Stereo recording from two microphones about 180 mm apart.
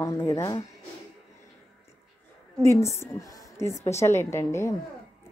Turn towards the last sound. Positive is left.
turn(degrees=15)  # may be behind; listen again after turning